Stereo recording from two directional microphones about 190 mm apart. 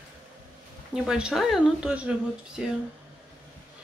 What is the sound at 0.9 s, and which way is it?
Speech, 5° right (ahead or behind).